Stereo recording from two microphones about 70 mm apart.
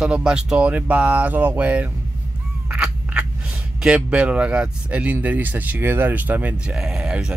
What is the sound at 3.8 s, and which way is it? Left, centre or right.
Speech, centre.